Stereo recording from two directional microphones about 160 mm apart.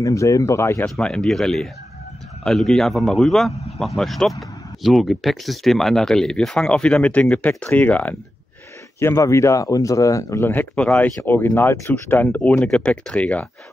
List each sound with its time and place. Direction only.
0.0 s speech: 20° left (ahead or behind)
0.8 s speech: 5° left (ahead or behind)